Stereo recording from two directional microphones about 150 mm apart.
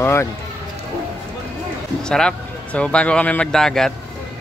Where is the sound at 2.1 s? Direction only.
5° left (ahead or behind).